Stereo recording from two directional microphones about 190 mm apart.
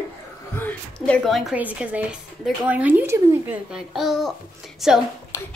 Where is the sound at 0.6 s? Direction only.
5° left (ahead or behind).